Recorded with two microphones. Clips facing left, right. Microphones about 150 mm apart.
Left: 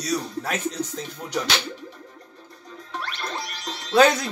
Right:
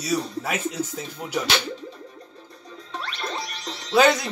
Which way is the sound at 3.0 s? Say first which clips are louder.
Right 1 dB; 25° right (ahead or behind).